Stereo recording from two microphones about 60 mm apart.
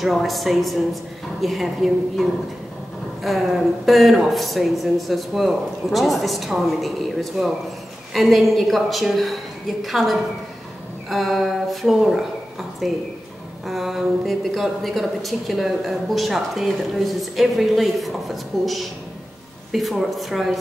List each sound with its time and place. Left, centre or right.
0.0 s a woman's voice: centre